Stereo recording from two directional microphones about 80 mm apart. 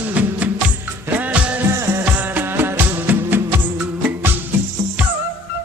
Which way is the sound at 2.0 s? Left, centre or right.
Right.